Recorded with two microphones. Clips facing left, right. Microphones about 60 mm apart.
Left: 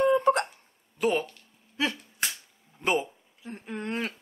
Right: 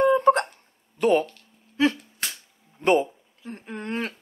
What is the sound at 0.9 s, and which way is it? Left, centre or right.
Speech, centre.